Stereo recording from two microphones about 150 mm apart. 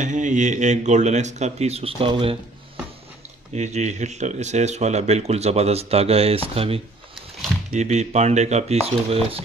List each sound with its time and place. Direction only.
0.0 s speech: 55° right (ahead or behind); by 2.3 s 35° right (ahead or behind)
3.5 s speech: 50° right (ahead or behind)
7.7 s speech: 50° right (ahead or behind)